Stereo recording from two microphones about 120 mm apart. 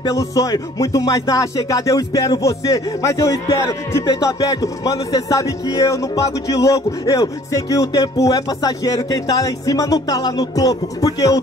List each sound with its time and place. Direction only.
0.0 s speech: 30° left (ahead or behind)